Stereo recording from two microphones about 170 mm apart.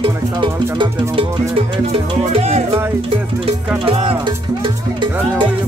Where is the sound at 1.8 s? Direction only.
40° right (ahead or behind).